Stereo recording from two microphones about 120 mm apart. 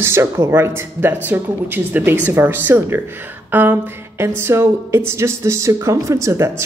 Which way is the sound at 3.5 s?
15° right (ahead or behind).